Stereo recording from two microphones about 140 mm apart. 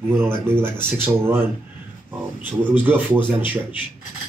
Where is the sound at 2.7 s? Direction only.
15° right (ahead or behind).